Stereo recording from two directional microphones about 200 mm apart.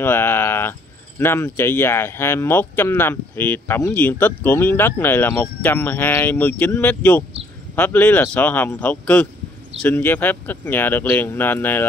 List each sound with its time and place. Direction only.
0.0 s speech: 10° left (ahead or behind)